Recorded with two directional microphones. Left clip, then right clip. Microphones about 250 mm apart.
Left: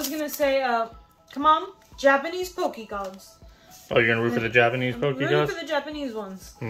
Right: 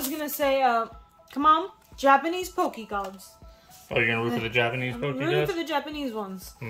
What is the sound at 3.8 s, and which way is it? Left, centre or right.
A man's voice, centre.